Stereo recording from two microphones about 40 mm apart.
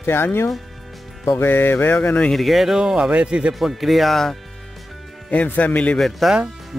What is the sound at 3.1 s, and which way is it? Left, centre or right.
Speech, right.